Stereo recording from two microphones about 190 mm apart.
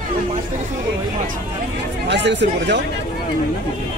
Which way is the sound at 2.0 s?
65° right (ahead or behind).